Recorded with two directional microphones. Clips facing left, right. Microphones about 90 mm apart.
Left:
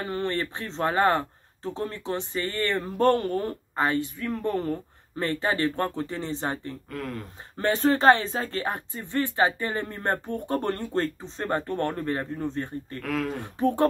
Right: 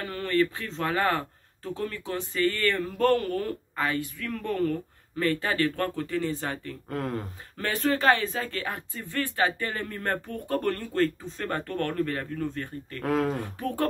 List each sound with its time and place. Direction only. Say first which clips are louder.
0.0 s speech: right 2 dB; 25° left (ahead or behind)
6.9 s speech: right 4 dB; 35° right (ahead or behind)
7.5 s speech: left 4 dB; 25° left (ahead or behind)
13.0 s speech: right 4 dB; 30° right (ahead or behind)
13.6 s speech: left 9 dB; 25° left (ahead or behind)